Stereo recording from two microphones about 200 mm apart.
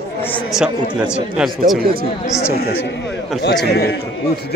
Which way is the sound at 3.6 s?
55° left (ahead or behind).